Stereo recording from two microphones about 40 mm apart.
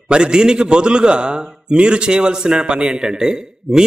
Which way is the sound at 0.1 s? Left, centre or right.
Right.